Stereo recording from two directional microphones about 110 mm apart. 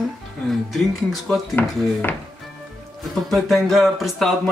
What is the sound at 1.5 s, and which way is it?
Speech, 20° left (ahead or behind).